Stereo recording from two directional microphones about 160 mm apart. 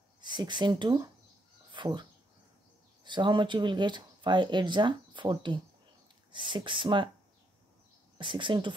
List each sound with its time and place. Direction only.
0.2 s speech: 30° right (ahead or behind)
1.7 s a sound: 30° right (ahead or behind)
3.0 s speech: 30° right (ahead or behind)
8.2 s speech: 30° right (ahead or behind)